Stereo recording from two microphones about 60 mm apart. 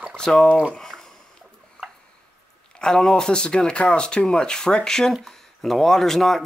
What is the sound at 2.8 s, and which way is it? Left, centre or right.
Speech, centre.